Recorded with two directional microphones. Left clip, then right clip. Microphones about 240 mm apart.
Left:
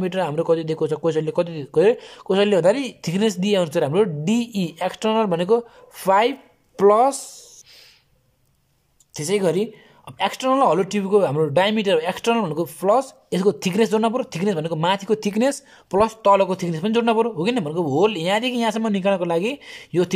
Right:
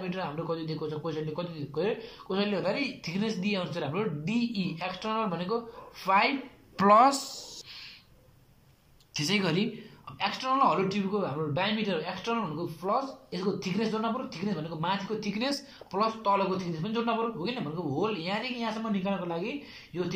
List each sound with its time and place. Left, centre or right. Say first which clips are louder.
0.0 s speech: left 12 dB; left
9.1 s speech: left 8 dB; left